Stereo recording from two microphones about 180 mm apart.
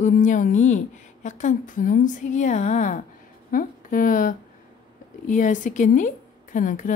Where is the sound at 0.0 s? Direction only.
45° left (ahead or behind).